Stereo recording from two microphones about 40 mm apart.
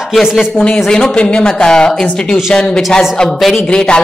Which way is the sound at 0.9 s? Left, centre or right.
Left.